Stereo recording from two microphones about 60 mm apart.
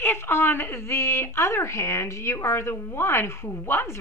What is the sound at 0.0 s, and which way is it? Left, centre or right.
A woman's voice, left.